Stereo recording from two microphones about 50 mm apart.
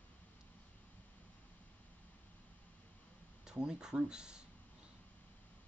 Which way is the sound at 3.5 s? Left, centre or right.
Centre.